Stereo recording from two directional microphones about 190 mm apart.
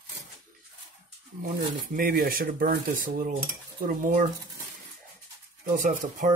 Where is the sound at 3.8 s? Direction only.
45° right (ahead or behind).